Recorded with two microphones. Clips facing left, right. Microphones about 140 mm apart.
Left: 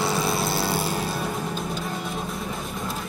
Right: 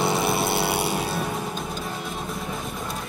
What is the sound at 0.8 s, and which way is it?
Music, centre (ahead or behind).